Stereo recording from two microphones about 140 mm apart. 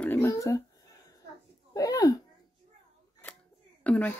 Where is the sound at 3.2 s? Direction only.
15° left (ahead or behind).